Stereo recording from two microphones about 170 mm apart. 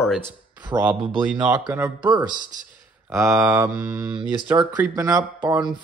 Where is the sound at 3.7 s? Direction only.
20° right (ahead or behind).